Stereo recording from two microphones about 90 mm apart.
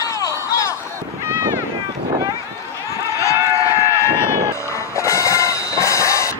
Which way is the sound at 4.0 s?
30° left (ahead or behind).